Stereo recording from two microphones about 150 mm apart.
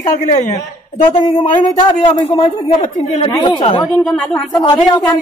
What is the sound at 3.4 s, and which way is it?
Speech, 30° left (ahead or behind).